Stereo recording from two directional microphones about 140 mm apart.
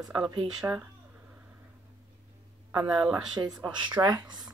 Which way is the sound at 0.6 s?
10° right (ahead or behind).